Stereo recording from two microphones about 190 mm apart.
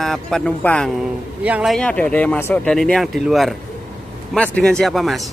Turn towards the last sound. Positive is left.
turn(degrees=0)  # may be behind; listen again after turning